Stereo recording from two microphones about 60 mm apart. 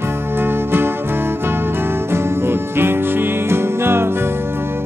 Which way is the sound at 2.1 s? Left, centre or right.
Right.